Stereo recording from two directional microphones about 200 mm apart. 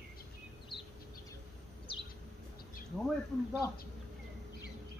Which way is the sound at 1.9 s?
25° left (ahead or behind).